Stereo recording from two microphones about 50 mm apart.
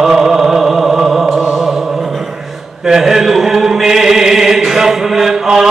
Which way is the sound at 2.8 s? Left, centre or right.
Centre.